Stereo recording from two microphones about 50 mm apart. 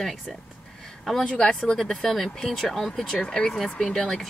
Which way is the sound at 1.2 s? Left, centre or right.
Centre.